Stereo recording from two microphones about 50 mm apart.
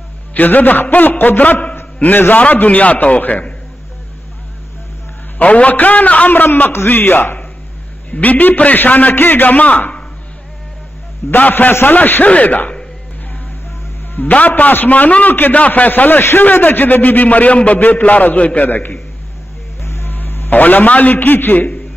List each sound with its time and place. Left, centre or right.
0.3 s a man's voice: left
1.4 s a man's voice: left
5.4 s a man's voice: left
8.1 s a man's voice: left
11.2 s a man's voice: left
14.1 s a man's voice: left
18.7 s a man's voice: left
19.8 s music: left
20.1 s a sound: left
20.5 s a man's voice: left